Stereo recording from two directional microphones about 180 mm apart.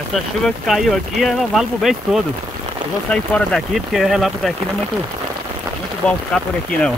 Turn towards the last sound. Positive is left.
turn(degrees=5)  # may be behind; listen again after turning